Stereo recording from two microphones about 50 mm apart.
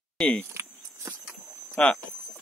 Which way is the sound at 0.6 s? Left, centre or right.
Right.